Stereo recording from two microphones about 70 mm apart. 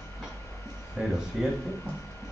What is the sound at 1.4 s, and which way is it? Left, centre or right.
Speech, centre.